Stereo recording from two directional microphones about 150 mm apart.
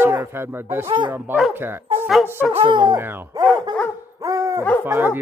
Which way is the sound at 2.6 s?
30° right (ahead or behind).